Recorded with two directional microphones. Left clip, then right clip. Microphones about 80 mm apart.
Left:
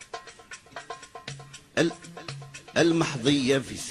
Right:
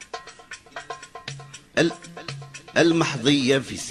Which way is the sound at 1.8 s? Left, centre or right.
Right.